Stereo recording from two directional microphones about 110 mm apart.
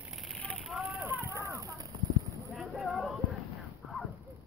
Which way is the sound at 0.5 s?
Centre (ahead or behind).